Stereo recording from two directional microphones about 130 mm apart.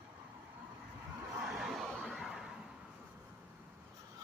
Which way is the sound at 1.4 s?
5° right (ahead or behind).